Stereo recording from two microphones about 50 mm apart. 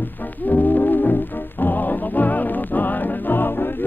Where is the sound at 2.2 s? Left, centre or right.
Left.